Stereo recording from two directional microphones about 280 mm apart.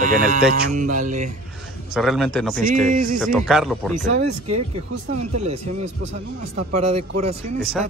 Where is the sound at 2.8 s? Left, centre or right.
Right.